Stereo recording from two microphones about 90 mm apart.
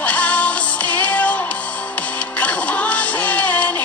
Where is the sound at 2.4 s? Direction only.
15° left (ahead or behind).